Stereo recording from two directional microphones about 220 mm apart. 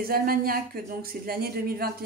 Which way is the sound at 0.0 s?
40° right (ahead or behind).